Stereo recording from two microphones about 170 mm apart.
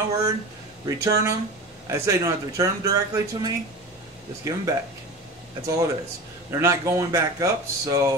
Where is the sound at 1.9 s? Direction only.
20° right (ahead or behind).